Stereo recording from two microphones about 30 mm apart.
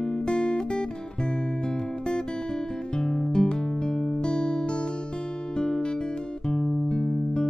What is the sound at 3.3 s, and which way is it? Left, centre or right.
Music, left.